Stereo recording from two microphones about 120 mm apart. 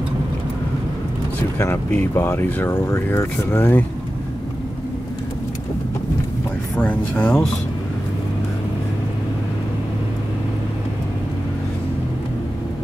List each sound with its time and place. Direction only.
1.6 s speech: 15° left (ahead or behind)
6.8 s speech: 10° left (ahead or behind)